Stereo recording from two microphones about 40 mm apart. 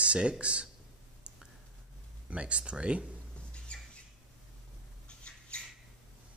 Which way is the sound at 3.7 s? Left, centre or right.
Left.